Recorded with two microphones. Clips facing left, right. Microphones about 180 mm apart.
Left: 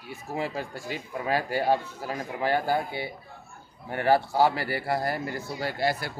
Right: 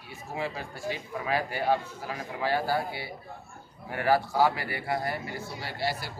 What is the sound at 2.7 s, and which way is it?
A man's voice, 20° left (ahead or behind).